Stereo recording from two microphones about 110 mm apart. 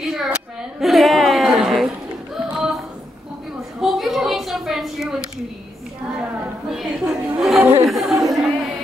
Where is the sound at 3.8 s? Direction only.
5° right (ahead or behind).